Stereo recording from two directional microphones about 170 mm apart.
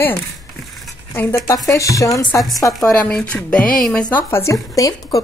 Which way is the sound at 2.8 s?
5° left (ahead or behind).